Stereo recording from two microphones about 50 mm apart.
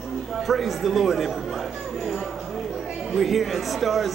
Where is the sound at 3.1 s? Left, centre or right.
Centre.